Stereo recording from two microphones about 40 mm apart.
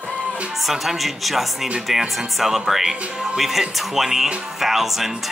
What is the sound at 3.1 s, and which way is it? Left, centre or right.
Speech, centre.